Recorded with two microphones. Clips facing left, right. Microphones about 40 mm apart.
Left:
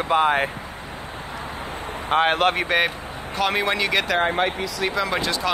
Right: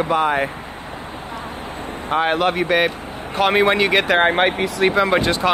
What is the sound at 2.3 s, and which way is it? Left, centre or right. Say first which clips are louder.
Speech: right 2 dB; left.